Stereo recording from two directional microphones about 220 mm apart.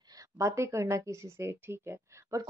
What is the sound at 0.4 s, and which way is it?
Speech, 15° right (ahead or behind).